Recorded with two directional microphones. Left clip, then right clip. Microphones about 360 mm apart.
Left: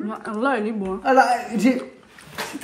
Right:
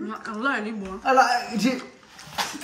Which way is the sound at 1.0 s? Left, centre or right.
Centre.